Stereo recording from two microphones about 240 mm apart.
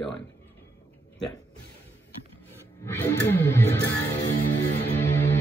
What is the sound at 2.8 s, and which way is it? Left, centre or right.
Music, centre.